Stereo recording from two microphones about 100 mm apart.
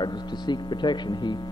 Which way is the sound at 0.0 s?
45° left (ahead or behind).